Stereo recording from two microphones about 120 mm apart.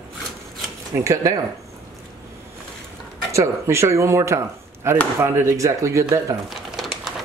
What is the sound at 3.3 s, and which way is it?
Speech, 25° right (ahead or behind).